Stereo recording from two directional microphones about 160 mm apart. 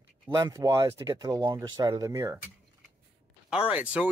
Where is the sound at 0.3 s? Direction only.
20° right (ahead or behind).